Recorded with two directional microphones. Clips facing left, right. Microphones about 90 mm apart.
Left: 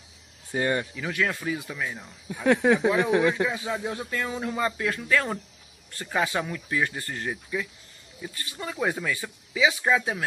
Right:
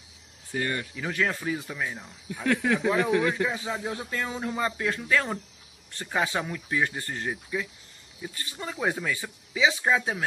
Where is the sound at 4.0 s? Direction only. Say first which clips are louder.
Left 1 dB; 20° right (ahead or behind).